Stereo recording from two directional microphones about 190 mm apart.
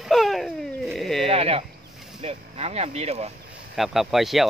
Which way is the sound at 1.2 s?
30° right (ahead or behind).